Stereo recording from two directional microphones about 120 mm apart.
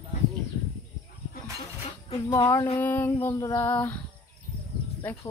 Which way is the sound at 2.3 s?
25° left (ahead or behind).